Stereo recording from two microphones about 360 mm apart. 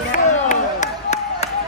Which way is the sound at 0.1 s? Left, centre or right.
Centre.